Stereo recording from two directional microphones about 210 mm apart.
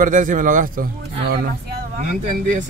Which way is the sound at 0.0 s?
40° right (ahead or behind).